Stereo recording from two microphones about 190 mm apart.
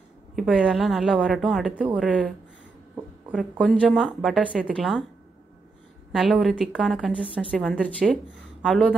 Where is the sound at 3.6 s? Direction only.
5° left (ahead or behind).